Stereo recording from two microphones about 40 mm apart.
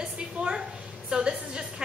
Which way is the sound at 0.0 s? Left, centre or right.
Right.